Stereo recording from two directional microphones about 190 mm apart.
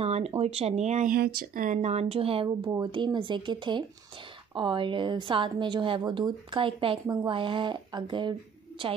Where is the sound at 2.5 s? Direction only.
15° right (ahead or behind).